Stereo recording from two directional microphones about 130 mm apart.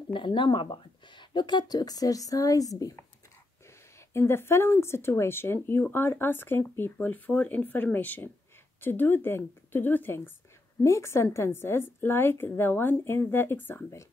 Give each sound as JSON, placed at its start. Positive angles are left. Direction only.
{"t": 0.1, "sound": "speech", "side_deg": 40}
{"t": 4.1, "sound": "a woman's voice", "side_deg": 20}